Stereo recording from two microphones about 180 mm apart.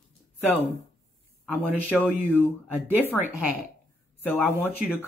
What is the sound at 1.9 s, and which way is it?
Speech, centre (ahead or behind).